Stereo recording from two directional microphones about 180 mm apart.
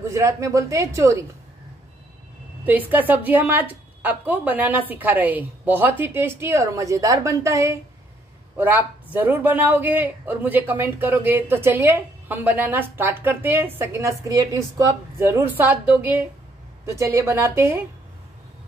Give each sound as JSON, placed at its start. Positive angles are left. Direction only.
{"t": 0.1, "sound": "speech", "side_deg": -15}
{"t": 2.6, "sound": "speech", "side_deg": -10}